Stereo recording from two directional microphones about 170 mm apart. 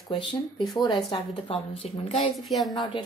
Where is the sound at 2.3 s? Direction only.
Centre (ahead or behind).